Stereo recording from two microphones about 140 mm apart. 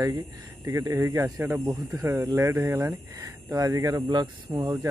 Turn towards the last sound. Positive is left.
turn(degrees=-20)  # may be behind; listen again after turning